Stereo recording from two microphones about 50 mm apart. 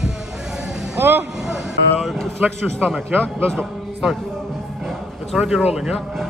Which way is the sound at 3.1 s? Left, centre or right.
Right.